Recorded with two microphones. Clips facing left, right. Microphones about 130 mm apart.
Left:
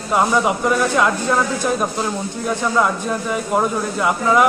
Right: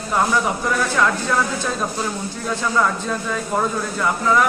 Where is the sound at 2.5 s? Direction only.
15° left (ahead or behind).